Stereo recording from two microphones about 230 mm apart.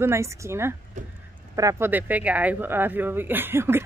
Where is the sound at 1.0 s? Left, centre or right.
Right.